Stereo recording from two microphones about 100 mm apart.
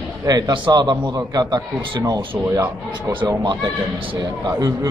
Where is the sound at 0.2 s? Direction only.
40° right (ahead or behind).